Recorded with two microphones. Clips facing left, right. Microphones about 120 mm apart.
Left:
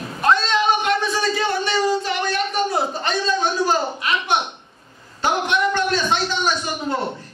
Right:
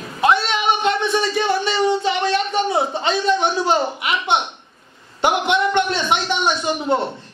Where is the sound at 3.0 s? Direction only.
20° right (ahead or behind).